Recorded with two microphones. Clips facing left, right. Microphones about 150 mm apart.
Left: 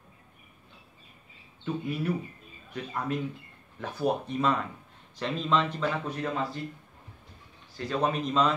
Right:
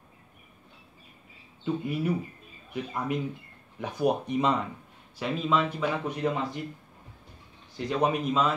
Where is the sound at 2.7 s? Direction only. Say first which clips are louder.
Right 1 dB; 15° right (ahead or behind).